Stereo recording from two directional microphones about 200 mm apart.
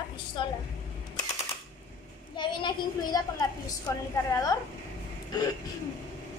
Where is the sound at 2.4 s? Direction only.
25° left (ahead or behind).